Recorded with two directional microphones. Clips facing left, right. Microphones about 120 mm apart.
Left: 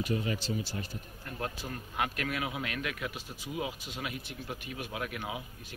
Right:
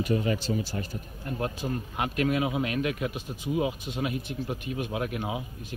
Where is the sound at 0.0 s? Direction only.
55° right (ahead or behind).